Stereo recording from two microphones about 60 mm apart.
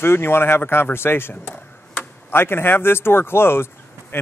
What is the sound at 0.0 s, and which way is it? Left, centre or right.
A man's voice, left.